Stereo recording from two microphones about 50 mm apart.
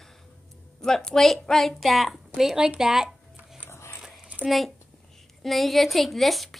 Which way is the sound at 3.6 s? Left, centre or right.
Left.